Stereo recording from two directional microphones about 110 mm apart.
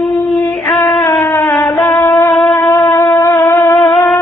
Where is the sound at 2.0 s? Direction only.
20° left (ahead or behind).